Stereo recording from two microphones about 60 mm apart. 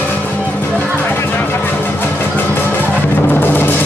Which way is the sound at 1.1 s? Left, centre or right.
Left.